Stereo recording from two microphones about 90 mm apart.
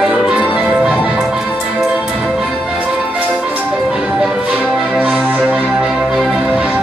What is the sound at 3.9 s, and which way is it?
Music, 15° right (ahead or behind).